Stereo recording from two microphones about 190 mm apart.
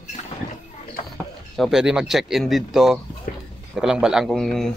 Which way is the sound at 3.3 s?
45° left (ahead or behind).